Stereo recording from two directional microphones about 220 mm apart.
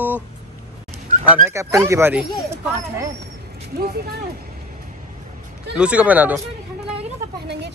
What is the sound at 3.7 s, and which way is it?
Speech, 45° right (ahead or behind).